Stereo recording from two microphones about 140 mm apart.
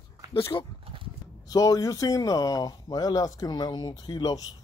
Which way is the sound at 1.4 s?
25° left (ahead or behind).